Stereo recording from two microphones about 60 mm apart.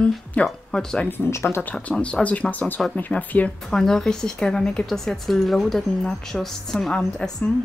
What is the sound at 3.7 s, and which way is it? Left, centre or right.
Speech, centre.